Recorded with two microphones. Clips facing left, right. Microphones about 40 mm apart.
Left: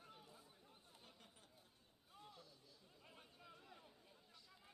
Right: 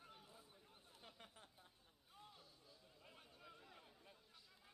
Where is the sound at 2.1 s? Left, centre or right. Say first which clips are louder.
Left 2 dB; centre.